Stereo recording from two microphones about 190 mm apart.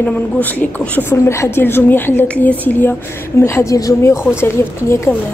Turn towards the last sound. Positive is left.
turn(degrees=15)  # may be behind; listen again after turning